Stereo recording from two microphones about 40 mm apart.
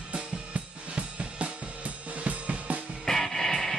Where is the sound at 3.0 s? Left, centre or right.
Centre.